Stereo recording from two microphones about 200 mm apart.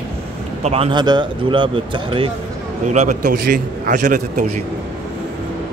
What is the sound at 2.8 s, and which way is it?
A man's voice, 35° right (ahead or behind).